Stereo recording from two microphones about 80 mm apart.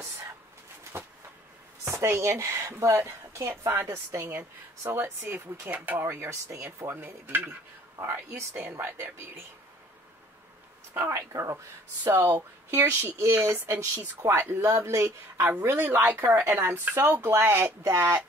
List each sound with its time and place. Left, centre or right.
0.9 s a sound: right
1.9 s speech: right
10.9 s speech: right
15.6 s speech: right